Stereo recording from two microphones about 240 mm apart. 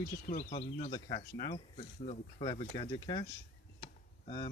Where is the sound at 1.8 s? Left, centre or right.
Left.